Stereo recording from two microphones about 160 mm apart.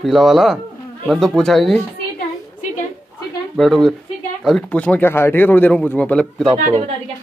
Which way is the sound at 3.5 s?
Centre (ahead or behind).